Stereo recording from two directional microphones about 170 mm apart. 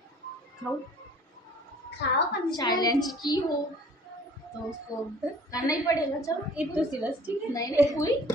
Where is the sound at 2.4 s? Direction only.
25° left (ahead or behind).